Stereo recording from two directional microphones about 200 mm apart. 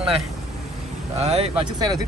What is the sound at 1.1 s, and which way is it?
Speech, 30° right (ahead or behind).